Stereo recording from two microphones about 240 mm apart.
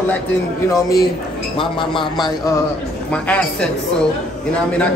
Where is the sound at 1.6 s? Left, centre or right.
Left.